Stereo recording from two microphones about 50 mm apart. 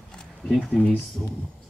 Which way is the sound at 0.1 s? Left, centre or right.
Centre.